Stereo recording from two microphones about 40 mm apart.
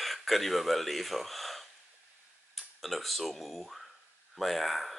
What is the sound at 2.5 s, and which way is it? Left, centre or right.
Speech, centre.